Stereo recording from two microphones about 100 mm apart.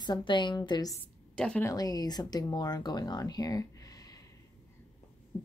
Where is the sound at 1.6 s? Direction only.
40° left (ahead or behind).